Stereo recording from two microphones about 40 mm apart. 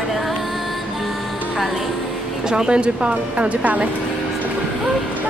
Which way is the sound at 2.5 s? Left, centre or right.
Right.